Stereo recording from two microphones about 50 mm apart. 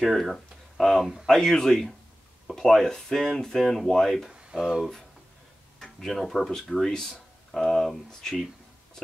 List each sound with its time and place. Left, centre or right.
0.0 s speech: centre
1.3 s speech: centre
4.3 s a sound: centre
4.6 s speech: centre